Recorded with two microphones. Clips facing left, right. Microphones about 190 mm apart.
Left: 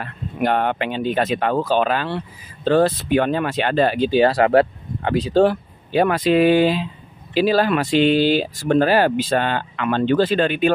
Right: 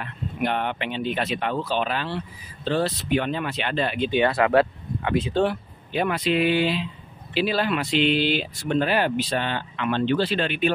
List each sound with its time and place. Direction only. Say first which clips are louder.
0.0 s speech: left 4 dB; 40° left (ahead or behind)